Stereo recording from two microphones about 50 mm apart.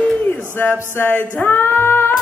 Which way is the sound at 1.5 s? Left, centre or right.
Left.